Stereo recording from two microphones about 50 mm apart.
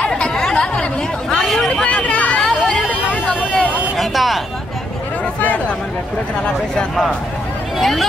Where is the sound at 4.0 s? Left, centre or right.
Centre.